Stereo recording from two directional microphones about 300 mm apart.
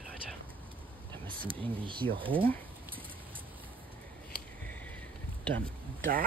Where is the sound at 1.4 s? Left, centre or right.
Centre.